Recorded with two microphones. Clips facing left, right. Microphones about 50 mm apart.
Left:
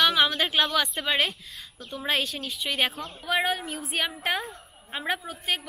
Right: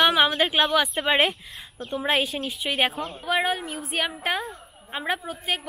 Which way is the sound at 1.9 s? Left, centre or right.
Centre.